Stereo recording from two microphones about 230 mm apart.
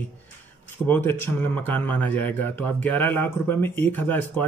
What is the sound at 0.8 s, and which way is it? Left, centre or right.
Speech, centre.